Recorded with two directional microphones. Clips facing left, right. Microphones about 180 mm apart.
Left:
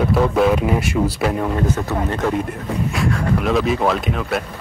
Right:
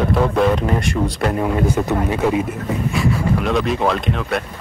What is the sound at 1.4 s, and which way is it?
Speech, 10° right (ahead or behind).